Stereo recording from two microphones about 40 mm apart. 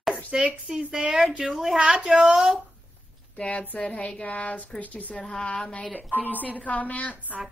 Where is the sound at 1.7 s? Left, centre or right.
Right.